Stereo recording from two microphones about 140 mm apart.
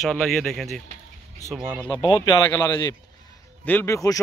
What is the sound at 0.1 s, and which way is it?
Speech, 5° left (ahead or behind).